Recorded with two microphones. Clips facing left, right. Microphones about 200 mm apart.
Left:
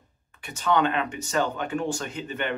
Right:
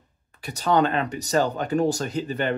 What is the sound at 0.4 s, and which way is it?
Speech, 35° right (ahead or behind).